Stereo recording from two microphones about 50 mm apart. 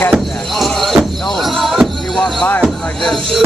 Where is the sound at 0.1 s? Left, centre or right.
Centre.